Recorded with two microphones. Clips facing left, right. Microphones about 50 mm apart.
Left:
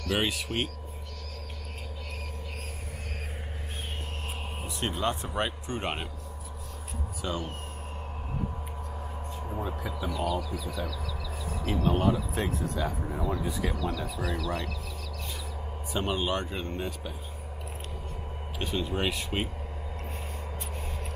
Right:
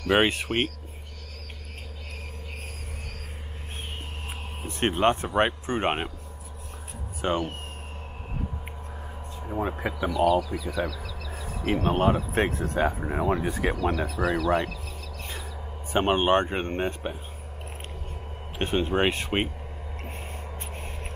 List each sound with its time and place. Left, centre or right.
0.1 s speech: right
4.6 s speech: right
7.2 s speech: right
9.6 s speech: right
10.9 s speech: centre
11.6 s speech: right
15.9 s speech: right
18.6 s speech: right
20.7 s a sound: right